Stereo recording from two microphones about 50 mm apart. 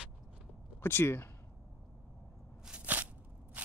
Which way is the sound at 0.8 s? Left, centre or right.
Left.